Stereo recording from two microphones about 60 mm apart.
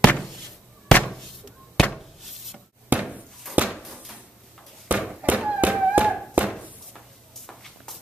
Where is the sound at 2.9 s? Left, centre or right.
Right.